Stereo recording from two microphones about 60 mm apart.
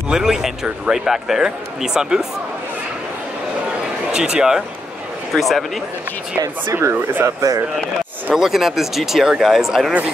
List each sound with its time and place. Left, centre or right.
0.1 s a man's voice: centre
4.1 s a man's voice: centre
5.3 s speech: centre
6.7 s speech: right
7.2 s speech: right
8.4 s speech: centre